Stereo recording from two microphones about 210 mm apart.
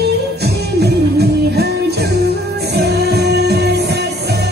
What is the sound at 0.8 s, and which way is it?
Music, 50° right (ahead or behind).